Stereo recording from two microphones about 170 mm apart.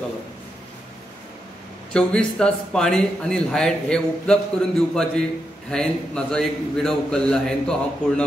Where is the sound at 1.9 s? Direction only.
5° left (ahead or behind).